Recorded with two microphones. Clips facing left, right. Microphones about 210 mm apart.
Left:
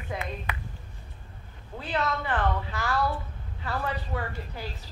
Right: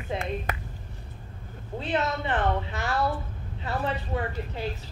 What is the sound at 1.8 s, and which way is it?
A woman's voice, 25° right (ahead or behind).